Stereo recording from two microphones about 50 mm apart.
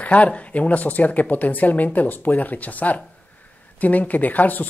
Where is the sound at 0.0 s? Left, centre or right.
Left.